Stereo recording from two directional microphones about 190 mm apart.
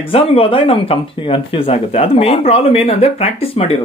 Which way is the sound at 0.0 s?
30° left (ahead or behind).